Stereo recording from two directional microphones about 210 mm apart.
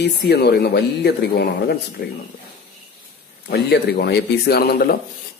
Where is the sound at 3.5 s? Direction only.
50° left (ahead or behind).